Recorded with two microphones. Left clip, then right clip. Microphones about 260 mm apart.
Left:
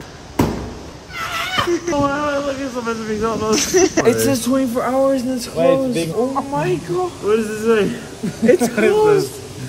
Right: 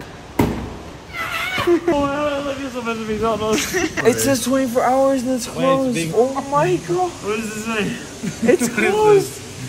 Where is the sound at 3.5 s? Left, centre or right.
Centre.